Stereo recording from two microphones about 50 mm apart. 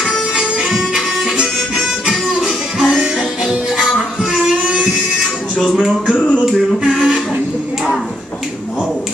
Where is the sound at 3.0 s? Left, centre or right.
Centre.